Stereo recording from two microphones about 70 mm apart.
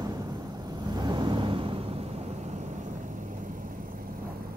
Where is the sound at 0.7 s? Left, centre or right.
Right.